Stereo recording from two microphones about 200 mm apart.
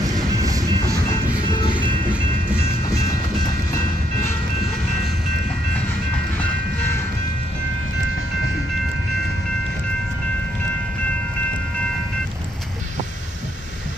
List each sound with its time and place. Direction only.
0.1 s music: 20° right (ahead or behind)
1.5 s music: 25° left (ahead or behind)
2.5 s train: 15° left (ahead or behind)
6.3 s train: 10° left (ahead or behind)